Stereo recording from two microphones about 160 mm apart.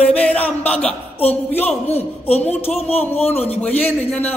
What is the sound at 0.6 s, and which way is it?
Speech, 40° left (ahead or behind).